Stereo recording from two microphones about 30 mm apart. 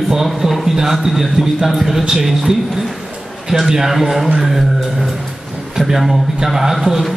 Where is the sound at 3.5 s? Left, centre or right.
Centre.